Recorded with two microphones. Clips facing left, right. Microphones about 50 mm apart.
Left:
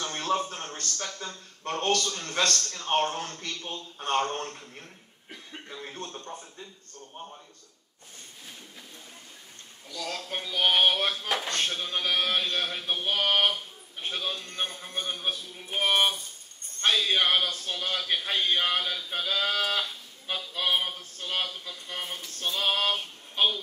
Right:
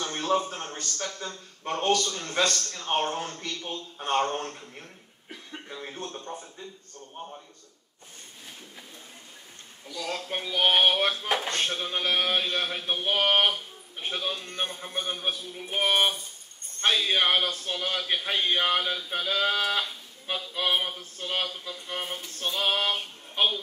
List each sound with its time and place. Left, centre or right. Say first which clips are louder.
0.0 s a sound: right 2 dB; centre
0.5 s a man's voice: right 1 dB; centre
1.1 s speech: right 2 dB; right
1.6 s a man's voice: right 2 dB; centre
9.8 s a man's voice: right 2 dB; centre